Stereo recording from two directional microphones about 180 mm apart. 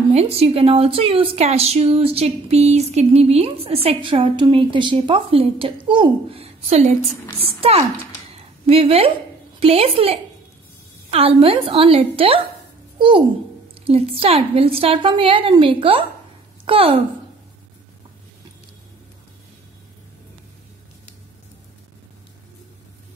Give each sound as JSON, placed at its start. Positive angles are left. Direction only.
{"t": 0.1, "sound": "a woman's voice", "side_deg": -35}
{"t": 13.8, "sound": "a woman's voice", "side_deg": -35}